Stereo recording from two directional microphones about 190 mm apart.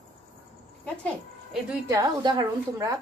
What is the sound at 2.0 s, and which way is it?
Speech, 20° right (ahead or behind).